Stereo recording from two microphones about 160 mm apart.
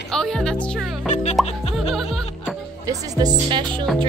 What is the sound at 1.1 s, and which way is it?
Music, 45° left (ahead or behind).